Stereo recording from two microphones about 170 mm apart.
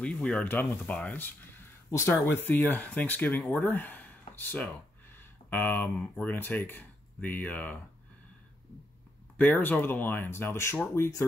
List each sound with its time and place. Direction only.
0.0 s speech: 5° left (ahead or behind)
9.4 s speech: 10° left (ahead or behind)